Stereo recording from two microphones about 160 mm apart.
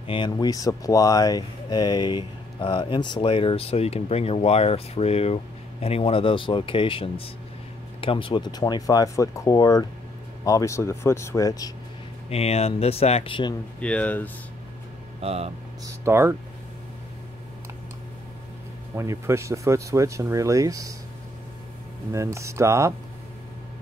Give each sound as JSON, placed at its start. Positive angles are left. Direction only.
{"t": 0.0, "sound": "speech", "side_deg": 30}
{"t": 12.3, "sound": "speech", "side_deg": 40}
{"t": 13.7, "sound": "speech", "side_deg": 5}
{"t": 15.1, "sound": "speech", "side_deg": -40}
{"t": 15.8, "sound": "speech", "side_deg": -15}
{"t": 18.9, "sound": "speech", "side_deg": -15}
{"t": 22.1, "sound": "speech", "side_deg": -20}